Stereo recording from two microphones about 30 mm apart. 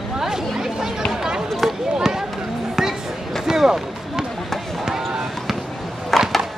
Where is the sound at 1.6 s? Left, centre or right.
Centre.